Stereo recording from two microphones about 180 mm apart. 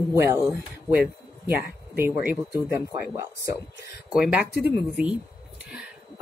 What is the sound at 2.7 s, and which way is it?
Speech, 15° right (ahead or behind).